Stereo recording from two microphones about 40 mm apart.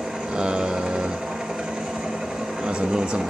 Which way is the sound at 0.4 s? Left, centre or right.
Centre.